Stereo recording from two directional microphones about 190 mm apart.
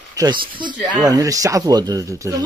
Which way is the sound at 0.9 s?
20° right (ahead or behind).